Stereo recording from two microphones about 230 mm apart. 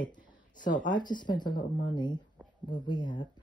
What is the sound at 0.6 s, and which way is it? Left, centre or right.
Speech, left.